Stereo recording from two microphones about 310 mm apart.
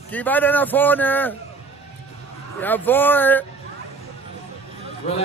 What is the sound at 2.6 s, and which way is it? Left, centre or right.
Speech, centre.